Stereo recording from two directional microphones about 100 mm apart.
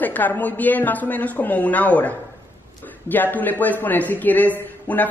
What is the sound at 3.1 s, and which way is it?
A man's voice, 20° left (ahead or behind).